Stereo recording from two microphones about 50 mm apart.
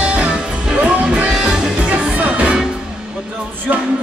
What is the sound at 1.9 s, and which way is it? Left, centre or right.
Music, right.